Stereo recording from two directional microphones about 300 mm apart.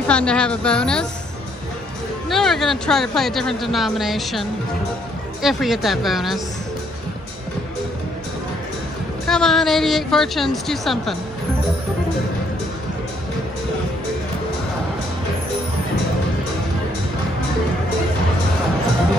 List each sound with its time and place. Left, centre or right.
0.1 s speech: centre
2.2 s speech: centre
9.3 s speech: centre